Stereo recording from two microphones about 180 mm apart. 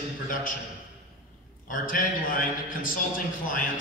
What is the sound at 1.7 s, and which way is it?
A man's voice, 50° left (ahead or behind).